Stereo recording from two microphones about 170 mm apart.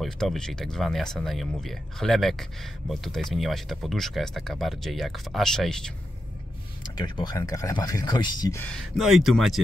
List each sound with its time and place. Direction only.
0.0 s speech: centre (ahead or behind)
7.0 s speech: 25° left (ahead or behind)
8.7 s speech: centre (ahead or behind)